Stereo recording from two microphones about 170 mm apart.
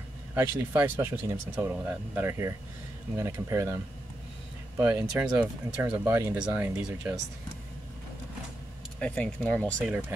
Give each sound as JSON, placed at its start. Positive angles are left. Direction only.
{"t": 0.3, "sound": "speech", "side_deg": -10}
{"t": 4.7, "sound": "speech", "side_deg": -10}
{"t": 9.0, "sound": "speech", "side_deg": 5}
{"t": 9.8, "sound": "speech", "side_deg": -10}